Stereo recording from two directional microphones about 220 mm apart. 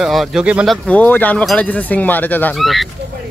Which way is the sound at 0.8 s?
5° left (ahead or behind).